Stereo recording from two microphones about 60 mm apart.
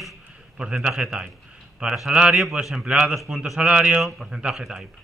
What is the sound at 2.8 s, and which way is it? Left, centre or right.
Speech, centre.